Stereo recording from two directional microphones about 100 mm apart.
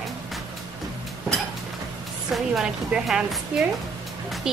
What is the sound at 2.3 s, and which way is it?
A woman's voice, 5° right (ahead or behind).